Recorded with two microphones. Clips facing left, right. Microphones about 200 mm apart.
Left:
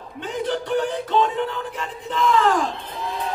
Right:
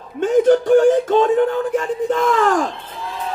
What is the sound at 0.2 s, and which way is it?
Speech, 45° right (ahead or behind).